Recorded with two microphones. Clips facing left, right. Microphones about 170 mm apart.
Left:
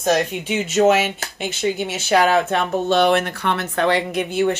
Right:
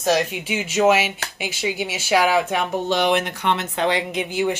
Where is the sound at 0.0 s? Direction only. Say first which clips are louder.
Left 1 dB; 5° right (ahead or behind).